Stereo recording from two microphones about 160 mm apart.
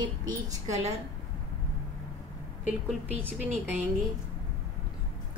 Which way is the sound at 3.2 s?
10° right (ahead or behind).